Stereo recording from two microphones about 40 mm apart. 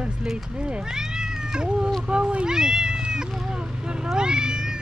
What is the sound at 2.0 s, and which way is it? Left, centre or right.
Speech, right.